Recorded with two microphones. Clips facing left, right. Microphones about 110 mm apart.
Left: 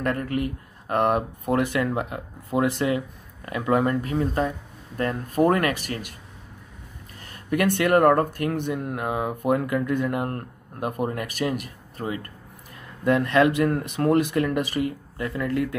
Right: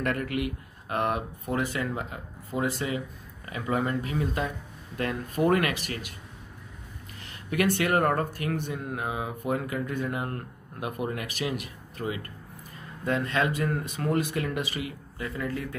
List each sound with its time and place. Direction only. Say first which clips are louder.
0.0 s a man's voice: left 3 dB; 35° left (ahead or behind)
0.8 s speech: left 6 dB; 50° left (ahead or behind)
7.2 s speech: left 3 dB; 45° left (ahead or behind)
13.0 s speech: left 8 dB; 60° left (ahead or behind)
15.3 s speech: left 8 dB; 65° left (ahead or behind)